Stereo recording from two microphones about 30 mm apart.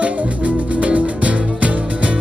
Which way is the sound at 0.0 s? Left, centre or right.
Right.